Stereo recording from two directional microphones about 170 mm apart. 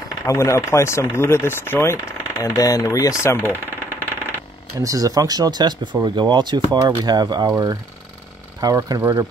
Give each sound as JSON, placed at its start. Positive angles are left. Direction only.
{"t": 0.3, "sound": "speech", "side_deg": 15}
{"t": 4.7, "sound": "speech", "side_deg": -20}